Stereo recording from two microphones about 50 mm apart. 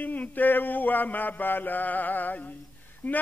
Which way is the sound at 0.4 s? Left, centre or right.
Left.